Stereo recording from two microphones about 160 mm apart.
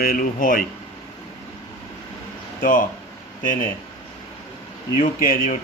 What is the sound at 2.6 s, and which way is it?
Speech, 60° left (ahead or behind).